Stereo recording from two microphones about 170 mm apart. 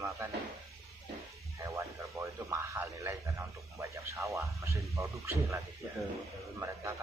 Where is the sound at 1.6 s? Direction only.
15° right (ahead or behind).